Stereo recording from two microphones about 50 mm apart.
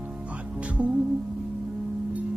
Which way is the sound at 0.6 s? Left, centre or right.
Right.